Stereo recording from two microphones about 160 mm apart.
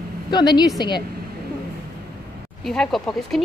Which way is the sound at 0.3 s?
25° left (ahead or behind).